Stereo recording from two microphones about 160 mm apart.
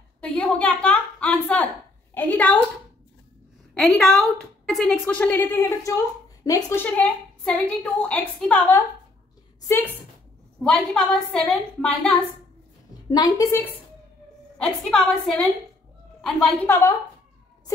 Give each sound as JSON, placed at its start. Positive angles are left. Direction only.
{"t": 0.2, "sound": "a woman's voice", "side_deg": 10}
{"t": 3.7, "sound": "a woman's voice", "side_deg": 5}
{"t": 10.6, "sound": "a woman's voice", "side_deg": 5}
{"t": 13.1, "sound": "a woman's voice", "side_deg": 25}
{"t": 14.6, "sound": "a woman's voice", "side_deg": 5}
{"t": 16.6, "sound": "a woman's voice", "side_deg": 15}